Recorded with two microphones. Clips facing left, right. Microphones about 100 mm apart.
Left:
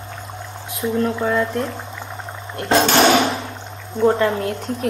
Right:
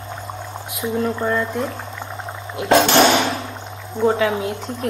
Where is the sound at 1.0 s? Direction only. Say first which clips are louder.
Left 1 dB; centre (ahead or behind).